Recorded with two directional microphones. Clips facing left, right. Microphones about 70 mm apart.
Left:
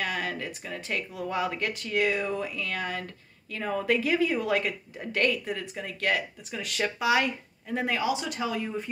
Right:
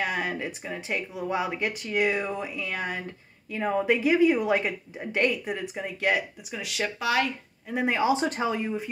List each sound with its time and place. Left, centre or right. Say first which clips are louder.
0.0 s a woman's voice: right 2 dB; centre
6.5 s speech: even; centre
7.8 s speech: right 5 dB; right